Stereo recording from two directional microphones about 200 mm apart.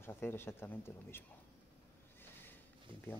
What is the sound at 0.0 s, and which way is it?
Speech, 10° left (ahead or behind).